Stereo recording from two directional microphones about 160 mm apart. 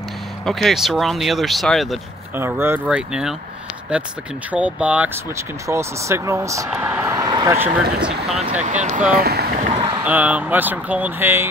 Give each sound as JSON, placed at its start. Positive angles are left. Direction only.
{"t": 0.5, "sound": "speech", "side_deg": 0}
{"t": 2.3, "sound": "speech", "side_deg": -15}
{"t": 6.7, "sound": "speech", "side_deg": -10}
{"t": 7.0, "sound": "vehicle", "side_deg": -20}
{"t": 7.5, "sound": "speech", "side_deg": -15}
{"t": 8.6, "sound": "speech", "side_deg": -50}
{"t": 9.1, "sound": "speech", "side_deg": -80}
{"t": 9.6, "sound": "a sound", "side_deg": -45}
{"t": 10.0, "sound": "speech", "side_deg": -10}